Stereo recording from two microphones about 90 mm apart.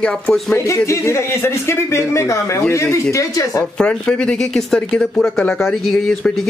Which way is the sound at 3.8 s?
10° left (ahead or behind).